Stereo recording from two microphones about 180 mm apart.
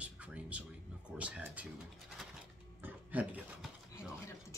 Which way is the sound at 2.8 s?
10° right (ahead or behind).